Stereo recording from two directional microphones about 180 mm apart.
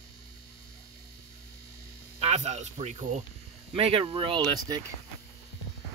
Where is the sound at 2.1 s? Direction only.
35° right (ahead or behind).